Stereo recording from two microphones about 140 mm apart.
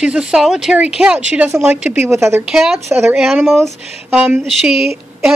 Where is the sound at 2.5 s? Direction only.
5° right (ahead or behind).